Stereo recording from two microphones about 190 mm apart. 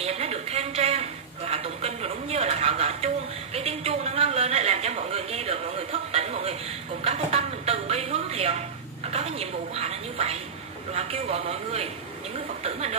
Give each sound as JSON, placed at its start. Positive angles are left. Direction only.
{"t": 0.0, "sound": "a sound", "side_deg": -35}
{"t": 7.1, "sound": "music", "side_deg": -30}
{"t": 9.1, "sound": "television", "side_deg": -35}
{"t": 11.0, "sound": "speech", "side_deg": -30}